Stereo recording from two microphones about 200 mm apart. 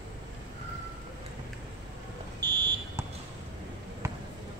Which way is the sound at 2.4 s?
20° right (ahead or behind).